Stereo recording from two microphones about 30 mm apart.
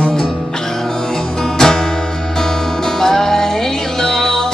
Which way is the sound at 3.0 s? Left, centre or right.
Centre.